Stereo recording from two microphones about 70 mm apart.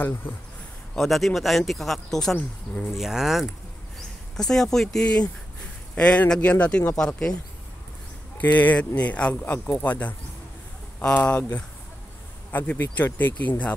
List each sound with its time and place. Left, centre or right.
0.9 s speech: centre
2.3 s speech: left
3.0 s speech: centre
4.4 s speech: centre
8.4 s speech: left
9.4 s speech: left
12.7 s speech: left